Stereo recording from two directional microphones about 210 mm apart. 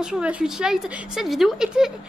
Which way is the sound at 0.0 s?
5° right (ahead or behind).